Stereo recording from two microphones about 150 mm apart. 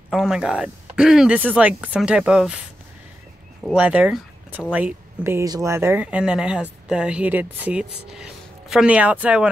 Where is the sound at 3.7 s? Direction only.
10° right (ahead or behind).